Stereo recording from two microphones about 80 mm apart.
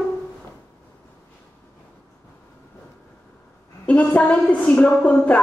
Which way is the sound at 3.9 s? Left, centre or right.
Centre.